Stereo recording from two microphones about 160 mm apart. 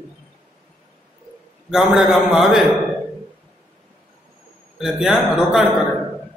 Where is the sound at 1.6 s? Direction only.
Centre (ahead or behind).